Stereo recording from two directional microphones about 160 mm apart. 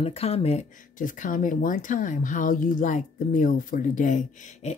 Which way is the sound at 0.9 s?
55° left (ahead or behind).